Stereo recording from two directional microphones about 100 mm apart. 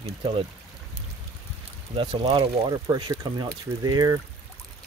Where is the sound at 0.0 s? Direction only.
75° right (ahead or behind).